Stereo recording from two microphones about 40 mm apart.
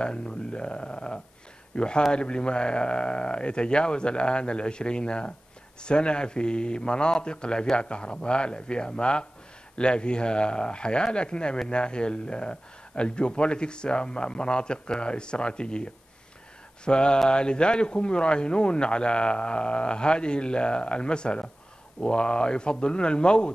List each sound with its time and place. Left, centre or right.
0.0 s speech: left